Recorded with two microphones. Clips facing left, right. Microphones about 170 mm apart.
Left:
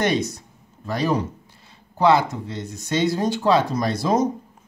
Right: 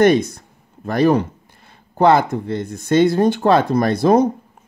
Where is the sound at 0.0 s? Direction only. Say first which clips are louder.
Right 8 dB; 55° right (ahead or behind).